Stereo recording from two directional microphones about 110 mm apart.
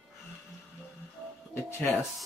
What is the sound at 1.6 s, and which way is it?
Speech, 25° left (ahead or behind).